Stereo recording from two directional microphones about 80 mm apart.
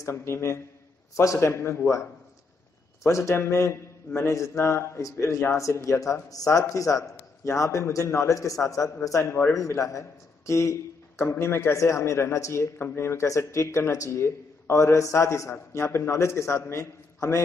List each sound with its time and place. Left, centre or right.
0.0 s a man's voice: left